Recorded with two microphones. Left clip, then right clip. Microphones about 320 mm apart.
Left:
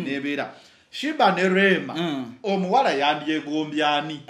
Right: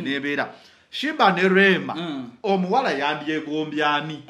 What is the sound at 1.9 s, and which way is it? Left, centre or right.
Speech, left.